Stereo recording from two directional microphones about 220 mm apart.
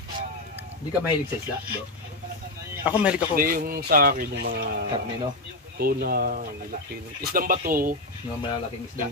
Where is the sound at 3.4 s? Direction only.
40° right (ahead or behind).